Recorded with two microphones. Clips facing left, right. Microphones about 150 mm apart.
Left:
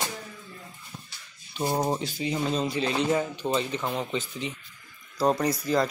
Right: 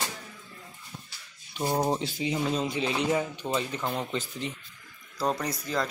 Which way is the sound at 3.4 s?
20° left (ahead or behind).